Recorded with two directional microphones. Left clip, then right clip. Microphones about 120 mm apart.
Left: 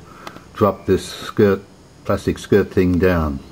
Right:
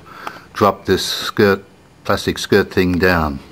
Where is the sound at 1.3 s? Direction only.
25° right (ahead or behind).